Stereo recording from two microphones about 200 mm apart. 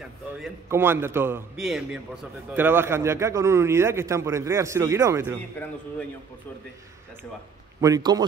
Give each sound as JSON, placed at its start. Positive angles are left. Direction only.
{"t": 0.7, "sound": "a man's voice", "side_deg": -10}
{"t": 7.8, "sound": "a man's voice", "side_deg": -20}